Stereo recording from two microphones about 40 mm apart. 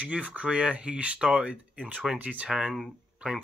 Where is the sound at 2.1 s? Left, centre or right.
Right.